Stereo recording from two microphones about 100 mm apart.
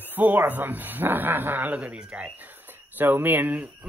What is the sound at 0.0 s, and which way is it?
Speech, 20° right (ahead or behind).